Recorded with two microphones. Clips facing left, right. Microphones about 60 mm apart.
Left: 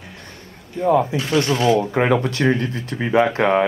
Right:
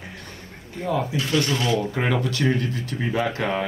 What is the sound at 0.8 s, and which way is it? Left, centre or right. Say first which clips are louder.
Speech: left 7 dB; left.